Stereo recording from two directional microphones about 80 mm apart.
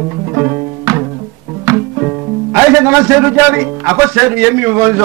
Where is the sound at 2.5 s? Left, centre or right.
Right.